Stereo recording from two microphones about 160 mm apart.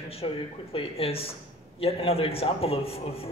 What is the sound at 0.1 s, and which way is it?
A man's voice, 35° left (ahead or behind).